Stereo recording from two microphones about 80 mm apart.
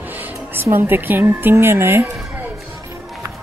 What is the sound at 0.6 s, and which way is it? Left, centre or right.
Speech, right.